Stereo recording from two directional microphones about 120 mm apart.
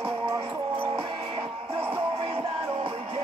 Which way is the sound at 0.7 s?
45° right (ahead or behind).